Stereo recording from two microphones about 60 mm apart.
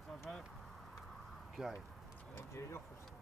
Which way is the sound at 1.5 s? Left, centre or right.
Centre.